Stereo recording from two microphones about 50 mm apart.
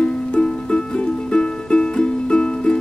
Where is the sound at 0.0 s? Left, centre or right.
Left.